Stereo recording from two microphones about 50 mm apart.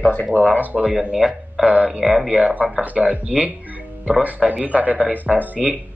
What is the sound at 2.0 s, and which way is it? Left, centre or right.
Speech, centre.